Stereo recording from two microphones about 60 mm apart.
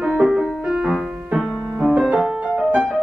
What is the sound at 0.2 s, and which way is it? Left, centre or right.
Music, centre.